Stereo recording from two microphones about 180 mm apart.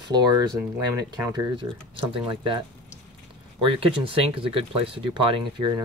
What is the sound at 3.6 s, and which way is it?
Speech, 30° right (ahead or behind).